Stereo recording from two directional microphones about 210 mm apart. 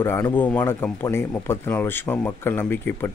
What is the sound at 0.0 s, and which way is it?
Speech, 10° left (ahead or behind).